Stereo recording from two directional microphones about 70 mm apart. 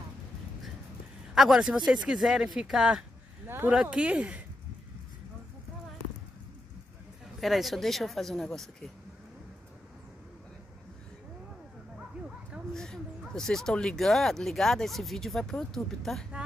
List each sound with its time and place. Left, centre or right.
1.3 s speech: centre
3.4 s speech: right
3.7 s speech: centre
7.3 s speech: centre
12.7 s a sound: centre
13.3 s speech: centre